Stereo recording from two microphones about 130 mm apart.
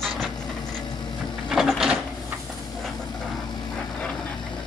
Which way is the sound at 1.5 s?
Centre (ahead or behind).